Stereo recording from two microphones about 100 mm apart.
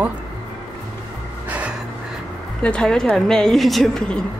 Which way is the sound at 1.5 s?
15° right (ahead or behind).